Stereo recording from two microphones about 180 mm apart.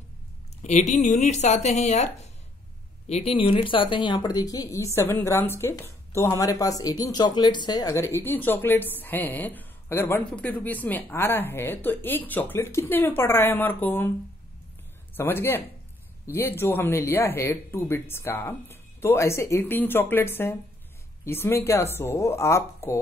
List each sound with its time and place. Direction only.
0.6 s speech: 40° left (ahead or behind)
3.1 s a woman's voice: 35° left (ahead or behind); by 14.1 s 10° left (ahead or behind)
15.1 s a woman's voice: 10° left (ahead or behind)